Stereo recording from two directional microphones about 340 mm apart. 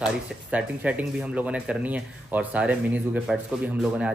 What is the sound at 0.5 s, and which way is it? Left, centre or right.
Speech, centre.